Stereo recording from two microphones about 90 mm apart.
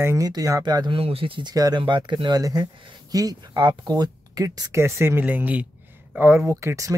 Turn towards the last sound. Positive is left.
turn(degrees=-35)  # may be behind; listen again after turning